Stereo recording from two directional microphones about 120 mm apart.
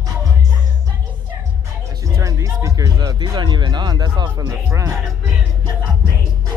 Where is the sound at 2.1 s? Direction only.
25° right (ahead or behind).